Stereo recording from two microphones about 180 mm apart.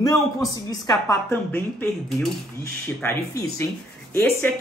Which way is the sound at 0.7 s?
15° left (ahead or behind).